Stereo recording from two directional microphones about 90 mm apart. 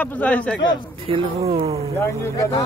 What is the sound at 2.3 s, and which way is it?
Speech, 40° left (ahead or behind).